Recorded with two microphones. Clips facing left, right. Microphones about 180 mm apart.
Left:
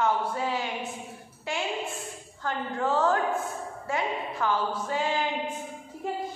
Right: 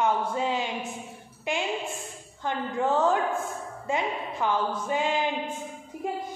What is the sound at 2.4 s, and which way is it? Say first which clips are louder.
A woman's voice: right 2 dB; 20° right (ahead or behind).